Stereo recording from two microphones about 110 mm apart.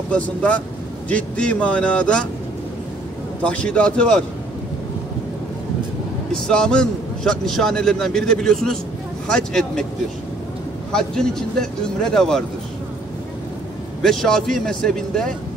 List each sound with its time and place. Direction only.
0.1 s speech: 15° left (ahead or behind)
3.4 s speech: 10° left (ahead or behind)
6.3 s a man's voice: 5° left (ahead or behind)
10.9 s a man's voice: 5° left (ahead or behind)
14.0 s a man's voice: 5° left (ahead or behind)